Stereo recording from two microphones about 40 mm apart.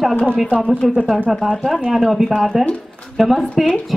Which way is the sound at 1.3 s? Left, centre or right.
Centre.